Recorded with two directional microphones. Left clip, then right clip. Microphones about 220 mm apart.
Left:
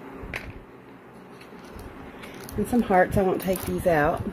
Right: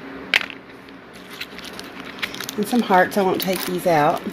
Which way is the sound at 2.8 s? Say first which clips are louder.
Right 4 dB; centre (ahead or behind).